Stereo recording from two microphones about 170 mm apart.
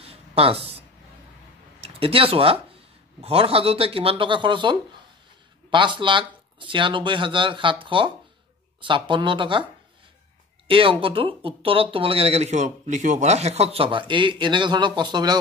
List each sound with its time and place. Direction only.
0.0 s a sound: 35° right (ahead or behind)
1.8 s speech: 35° right (ahead or behind)
10.7 s speech: 30° right (ahead or behind)